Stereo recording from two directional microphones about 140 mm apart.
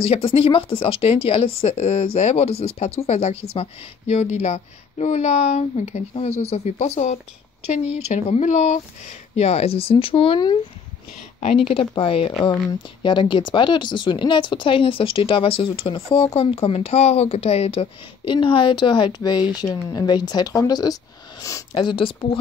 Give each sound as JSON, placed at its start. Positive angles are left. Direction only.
{"t": 0.0, "sound": "speech", "side_deg": 40}
{"t": 21.7, "sound": "speech", "side_deg": 35}